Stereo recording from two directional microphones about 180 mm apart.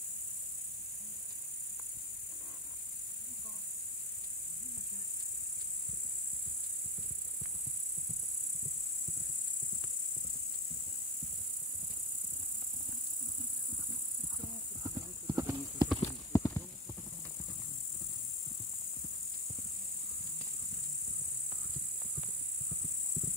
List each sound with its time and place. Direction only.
14.4 s clip-clop: 15° right (ahead or behind)
16.3 s clip-clop: 15° left (ahead or behind)